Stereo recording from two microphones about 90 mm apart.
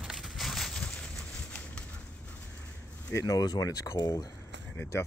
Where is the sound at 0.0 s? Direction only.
Centre (ahead or behind).